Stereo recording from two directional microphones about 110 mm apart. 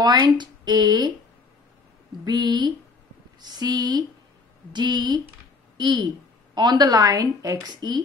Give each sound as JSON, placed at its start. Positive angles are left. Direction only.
{"t": 0.0, "sound": "a woman's voice", "side_deg": -40}
{"t": 2.2, "sound": "a woman's voice", "side_deg": -40}